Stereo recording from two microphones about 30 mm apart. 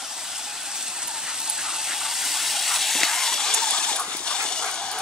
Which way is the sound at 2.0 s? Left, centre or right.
Centre.